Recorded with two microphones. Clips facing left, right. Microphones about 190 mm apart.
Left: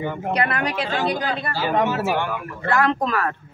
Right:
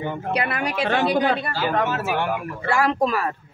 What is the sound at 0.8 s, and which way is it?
Speech, 65° right (ahead or behind).